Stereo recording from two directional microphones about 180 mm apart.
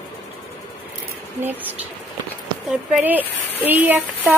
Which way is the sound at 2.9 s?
10° right (ahead or behind).